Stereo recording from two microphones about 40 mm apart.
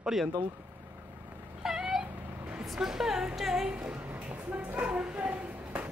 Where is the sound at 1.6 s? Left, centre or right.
Centre.